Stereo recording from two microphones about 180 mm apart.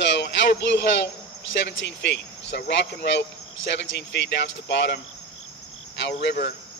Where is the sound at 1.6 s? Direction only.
75° left (ahead or behind).